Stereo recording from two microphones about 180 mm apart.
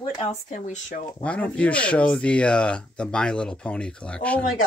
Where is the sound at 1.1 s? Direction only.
10° left (ahead or behind).